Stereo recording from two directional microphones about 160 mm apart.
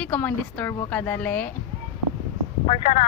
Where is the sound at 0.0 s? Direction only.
10° left (ahead or behind).